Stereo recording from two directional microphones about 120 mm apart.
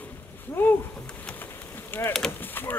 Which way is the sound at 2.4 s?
15° left (ahead or behind).